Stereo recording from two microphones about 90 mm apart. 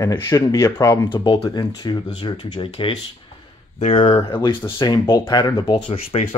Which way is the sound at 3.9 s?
70° left (ahead or behind).